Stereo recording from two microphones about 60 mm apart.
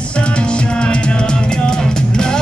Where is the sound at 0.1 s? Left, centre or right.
Centre.